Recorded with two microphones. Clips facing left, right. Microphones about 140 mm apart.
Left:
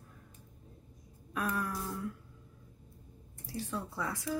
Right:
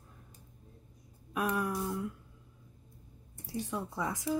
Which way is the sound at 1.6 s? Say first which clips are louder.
Right 3 dB; 15° right (ahead or behind).